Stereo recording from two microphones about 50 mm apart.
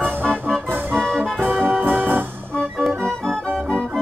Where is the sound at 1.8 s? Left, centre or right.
Right.